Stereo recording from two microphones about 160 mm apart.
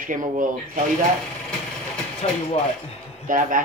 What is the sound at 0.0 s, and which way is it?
Mechanisms, 55° right (ahead or behind).